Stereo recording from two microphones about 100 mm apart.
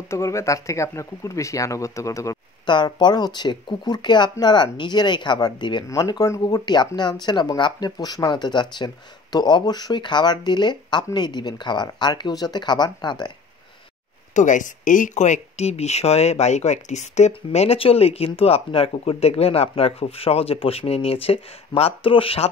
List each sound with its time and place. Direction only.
0.1 s speech: 30° left (ahead or behind)
2.6 s speech: 50° left (ahead or behind)
5.9 s speech: 35° left (ahead or behind)
6.4 s speech: 45° left (ahead or behind)
15.5 s speech: 90° left; by 22.5 s 70° left (ahead or behind)